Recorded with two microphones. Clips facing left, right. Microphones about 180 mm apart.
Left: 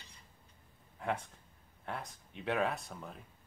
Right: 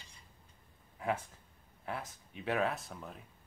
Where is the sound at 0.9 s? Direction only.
5° right (ahead or behind).